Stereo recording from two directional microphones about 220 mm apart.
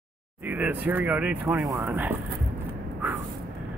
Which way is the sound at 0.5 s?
10° right (ahead or behind).